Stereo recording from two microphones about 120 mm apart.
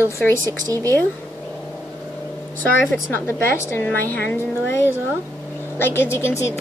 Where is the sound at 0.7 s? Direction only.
25° right (ahead or behind).